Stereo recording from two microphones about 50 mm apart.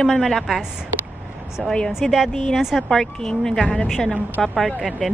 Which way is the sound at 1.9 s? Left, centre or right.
Centre.